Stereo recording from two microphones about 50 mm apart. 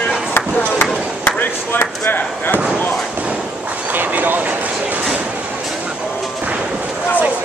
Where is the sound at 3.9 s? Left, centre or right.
Right.